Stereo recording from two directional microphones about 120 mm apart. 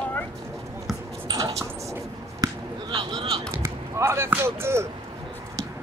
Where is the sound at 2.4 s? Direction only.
35° right (ahead or behind).